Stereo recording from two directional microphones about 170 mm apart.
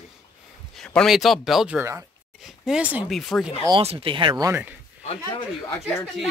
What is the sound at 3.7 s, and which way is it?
Speech, 35° right (ahead or behind).